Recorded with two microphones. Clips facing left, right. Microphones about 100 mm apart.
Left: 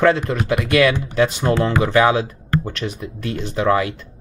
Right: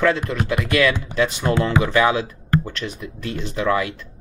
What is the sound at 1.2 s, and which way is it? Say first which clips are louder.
Speech: left 3 dB; 25° left (ahead or behind).